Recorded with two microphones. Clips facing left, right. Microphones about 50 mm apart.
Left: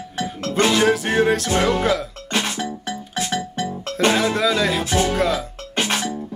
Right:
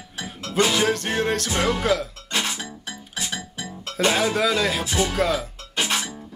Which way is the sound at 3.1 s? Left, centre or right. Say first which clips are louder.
Left 7 dB; left.